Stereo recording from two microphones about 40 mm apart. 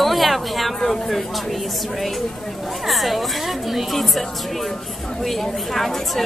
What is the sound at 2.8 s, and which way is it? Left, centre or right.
Speech, centre.